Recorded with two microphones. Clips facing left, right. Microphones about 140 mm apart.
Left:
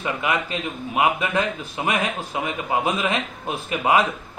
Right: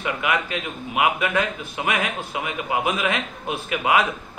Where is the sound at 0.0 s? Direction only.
30° left (ahead or behind).